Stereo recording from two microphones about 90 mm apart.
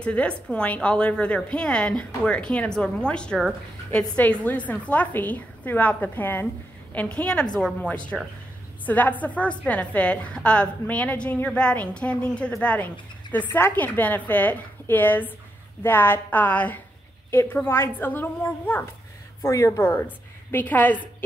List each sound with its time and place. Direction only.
0.0 s a woman's voice: 15° left (ahead or behind)
19.4 s a woman's voice: 35° left (ahead or behind)
19.9 s a woman's voice: 20° left (ahead or behind)